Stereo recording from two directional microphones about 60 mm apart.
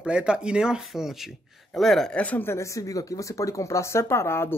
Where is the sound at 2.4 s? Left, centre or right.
Left.